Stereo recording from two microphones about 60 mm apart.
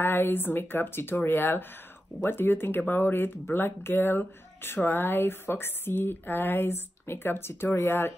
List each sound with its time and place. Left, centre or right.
0.0 s speech: left